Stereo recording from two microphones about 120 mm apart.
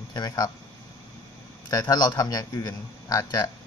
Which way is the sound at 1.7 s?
30° left (ahead or behind).